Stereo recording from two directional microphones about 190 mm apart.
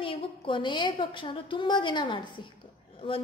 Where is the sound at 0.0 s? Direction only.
25° left (ahead or behind).